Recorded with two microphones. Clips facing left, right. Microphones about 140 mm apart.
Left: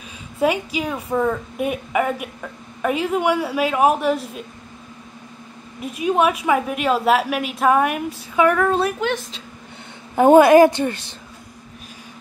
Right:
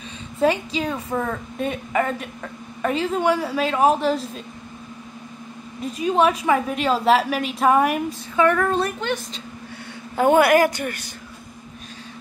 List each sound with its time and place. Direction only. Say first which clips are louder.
0.4 s a woman's voice: even; 10° left (ahead or behind)
5.8 s a woman's voice: left 1 dB; 10° left (ahead or behind)
10.1 s a woman's voice: left 5 dB; 20° left (ahead or behind)